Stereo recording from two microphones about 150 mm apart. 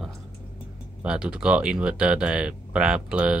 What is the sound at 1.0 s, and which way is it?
Speech, 5° right (ahead or behind).